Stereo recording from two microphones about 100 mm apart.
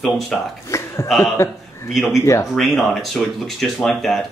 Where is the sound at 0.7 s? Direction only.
30° left (ahead or behind).